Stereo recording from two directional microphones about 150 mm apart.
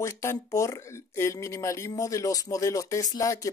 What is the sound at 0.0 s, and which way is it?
Speech, 20° left (ahead or behind).